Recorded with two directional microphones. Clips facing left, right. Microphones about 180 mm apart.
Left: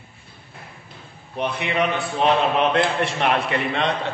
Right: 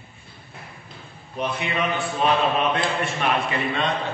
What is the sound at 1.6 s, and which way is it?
A man's voice, 65° left (ahead or behind).